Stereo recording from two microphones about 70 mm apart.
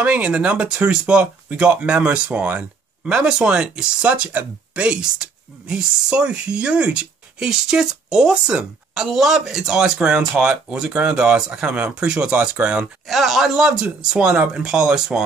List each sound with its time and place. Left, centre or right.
0.0 s speech: centre
13.0 s speech: centre